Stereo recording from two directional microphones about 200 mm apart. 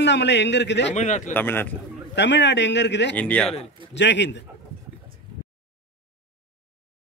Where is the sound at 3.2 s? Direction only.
5° left (ahead or behind).